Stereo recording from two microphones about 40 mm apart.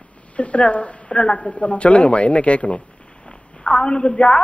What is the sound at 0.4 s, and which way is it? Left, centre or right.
A woman's voice, left.